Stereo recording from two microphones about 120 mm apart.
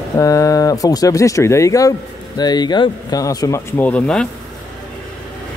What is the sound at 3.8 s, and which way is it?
Speech, 10° left (ahead or behind).